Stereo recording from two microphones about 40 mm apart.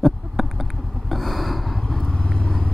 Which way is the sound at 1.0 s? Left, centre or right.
Centre.